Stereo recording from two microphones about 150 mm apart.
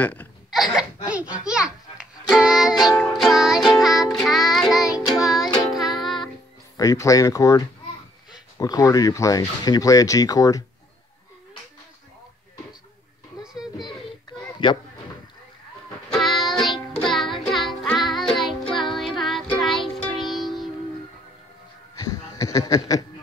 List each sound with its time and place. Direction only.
0.0 s speech: 10° left (ahead or behind)
0.5 s baby cry: centre (ahead or behind)
1.0 s music: 10° right (ahead or behind)
6.8 s speech: 20° left (ahead or behind)
13.4 s a sound: 5° right (ahead or behind)
16.1 s music: centre (ahead or behind)
21.9 s a sound: 25° left (ahead or behind)